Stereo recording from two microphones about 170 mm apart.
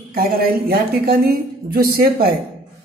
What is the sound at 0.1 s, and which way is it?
A woman's voice, 60° right (ahead or behind).